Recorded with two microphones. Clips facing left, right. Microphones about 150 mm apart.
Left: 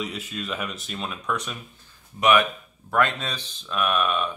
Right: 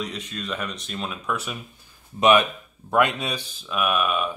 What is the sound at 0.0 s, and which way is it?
Speech, 5° left (ahead or behind).